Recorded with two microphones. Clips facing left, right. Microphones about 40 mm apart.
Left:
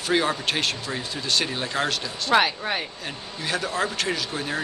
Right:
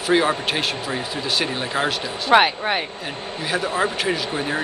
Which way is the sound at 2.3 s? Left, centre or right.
Right.